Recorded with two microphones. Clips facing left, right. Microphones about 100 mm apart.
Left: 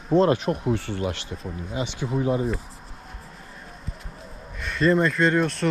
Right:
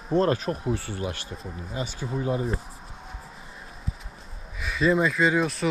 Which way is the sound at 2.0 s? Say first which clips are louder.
Left 4 dB; 25° left (ahead or behind).